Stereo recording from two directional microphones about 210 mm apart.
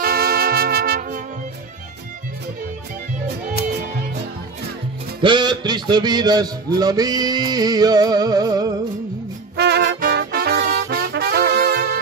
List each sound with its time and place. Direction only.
0.0 s trumpet: 45° right (ahead or behind)
5.2 s a man's voice: 20° right (ahead or behind)
9.6 s music: 55° right (ahead or behind)